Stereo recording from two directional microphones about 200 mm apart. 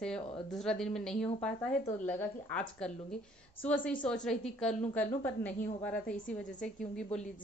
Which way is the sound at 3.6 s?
5° left (ahead or behind).